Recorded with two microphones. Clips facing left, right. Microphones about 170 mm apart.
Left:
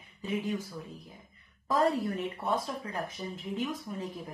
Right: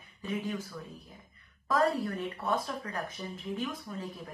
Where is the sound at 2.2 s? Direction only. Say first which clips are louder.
Left 1 dB; 25° left (ahead or behind).